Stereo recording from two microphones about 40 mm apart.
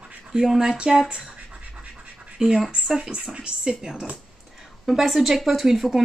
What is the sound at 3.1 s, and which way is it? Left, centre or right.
Speech, right.